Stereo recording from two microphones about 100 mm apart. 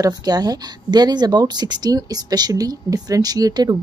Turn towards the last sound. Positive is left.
turn(degrees=-40)  # may be behind; listen again after turning